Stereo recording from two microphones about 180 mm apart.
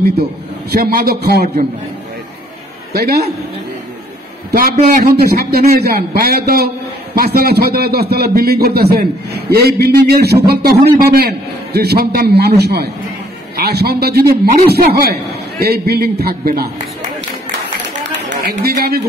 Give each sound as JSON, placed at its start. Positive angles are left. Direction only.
{"t": 0.7, "sound": "a man's voice", "side_deg": -55}
{"t": 2.9, "sound": "a man's voice", "side_deg": -60}
{"t": 4.6, "sound": "a man's voice", "side_deg": -55}
{"t": 18.1, "sound": "speech", "side_deg": -70}